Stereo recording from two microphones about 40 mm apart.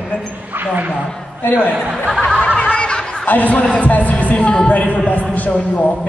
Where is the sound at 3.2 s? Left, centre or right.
Left.